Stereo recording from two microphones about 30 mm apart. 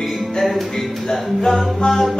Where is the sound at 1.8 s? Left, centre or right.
Left.